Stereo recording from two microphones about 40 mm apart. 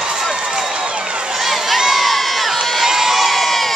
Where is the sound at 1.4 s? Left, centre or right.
Centre.